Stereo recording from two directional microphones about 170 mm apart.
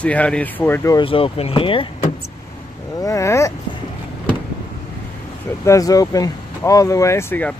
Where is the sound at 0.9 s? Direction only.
30° left (ahead or behind).